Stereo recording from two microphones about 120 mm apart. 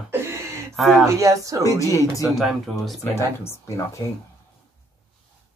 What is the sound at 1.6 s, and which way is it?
Speech, 25° left (ahead or behind).